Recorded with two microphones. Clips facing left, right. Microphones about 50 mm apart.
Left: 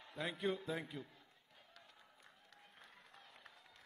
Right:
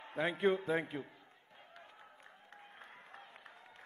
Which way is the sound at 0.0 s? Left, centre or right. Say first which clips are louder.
Right 8 dB; right.